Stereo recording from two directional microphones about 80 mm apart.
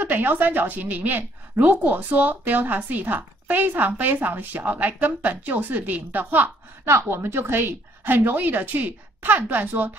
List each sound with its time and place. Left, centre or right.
0.0 s a woman's voice: right